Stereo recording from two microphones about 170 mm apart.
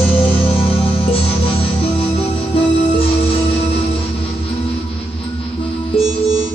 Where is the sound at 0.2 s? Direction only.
35° left (ahead or behind).